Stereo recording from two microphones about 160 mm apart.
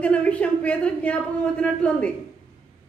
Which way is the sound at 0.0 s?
10° left (ahead or behind).